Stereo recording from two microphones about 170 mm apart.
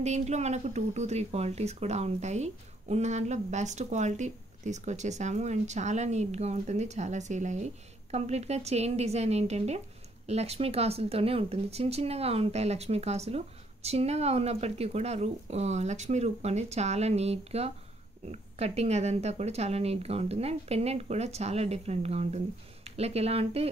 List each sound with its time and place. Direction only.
0.0 s speech: 40° right (ahead or behind)